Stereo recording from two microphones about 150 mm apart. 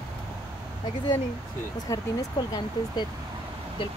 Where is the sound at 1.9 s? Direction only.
20° left (ahead or behind).